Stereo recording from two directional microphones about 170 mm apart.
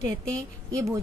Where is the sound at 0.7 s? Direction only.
20° right (ahead or behind).